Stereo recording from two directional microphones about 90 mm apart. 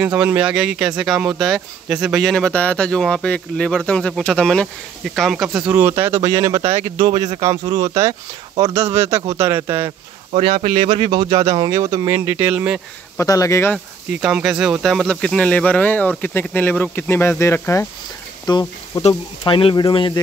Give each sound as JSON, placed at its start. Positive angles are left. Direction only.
{"t": 0.0, "sound": "speech", "side_deg": -15}
{"t": 2.2, "sound": "speech", "side_deg": 5}
{"t": 5.7, "sound": "speech", "side_deg": -25}
{"t": 7.0, "sound": "speech", "side_deg": -55}
{"t": 10.3, "sound": "speech", "side_deg": -80}
{"t": 11.7, "sound": "speech", "side_deg": -45}
{"t": 12.4, "sound": "speech", "side_deg": -15}
{"t": 13.2, "sound": "speech", "side_deg": 35}
{"t": 14.2, "sound": "speech", "side_deg": -10}
{"t": 18.5, "sound": "speech", "side_deg": 55}
{"t": 19.4, "sound": "speech", "side_deg": 65}